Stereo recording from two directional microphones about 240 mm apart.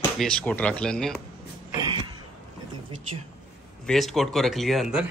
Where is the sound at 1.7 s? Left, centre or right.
Centre.